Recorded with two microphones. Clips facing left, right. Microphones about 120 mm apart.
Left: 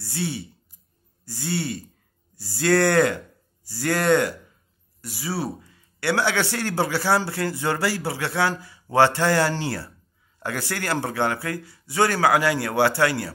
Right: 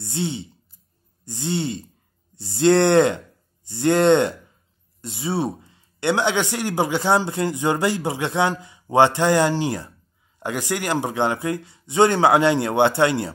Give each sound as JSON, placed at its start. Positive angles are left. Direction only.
{"t": 0.0, "sound": "speech", "side_deg": -20}